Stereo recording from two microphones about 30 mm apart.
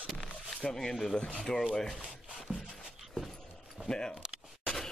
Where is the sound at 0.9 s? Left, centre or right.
Centre.